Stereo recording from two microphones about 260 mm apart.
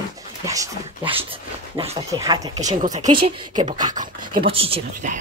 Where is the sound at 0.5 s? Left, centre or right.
Centre.